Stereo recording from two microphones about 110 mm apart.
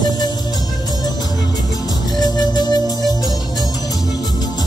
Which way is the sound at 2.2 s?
35° left (ahead or behind).